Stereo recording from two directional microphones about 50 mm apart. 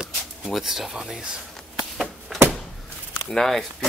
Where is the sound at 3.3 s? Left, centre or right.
Centre.